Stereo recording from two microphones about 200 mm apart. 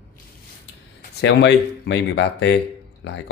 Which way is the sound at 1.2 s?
60° left (ahead or behind).